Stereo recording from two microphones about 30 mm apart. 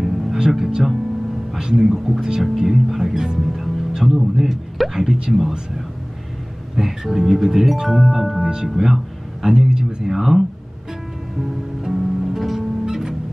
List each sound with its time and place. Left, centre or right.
0.0 s music: centre
0.6 s speech: right
4.0 s a man's voice: centre
4.9 s speech: right
6.8 s speech: centre
8.4 s speech: right
8.6 s speech: centre
8.9 s a sound: centre
10.1 s a man's voice: centre
11.9 s music: centre
12.8 s music: centre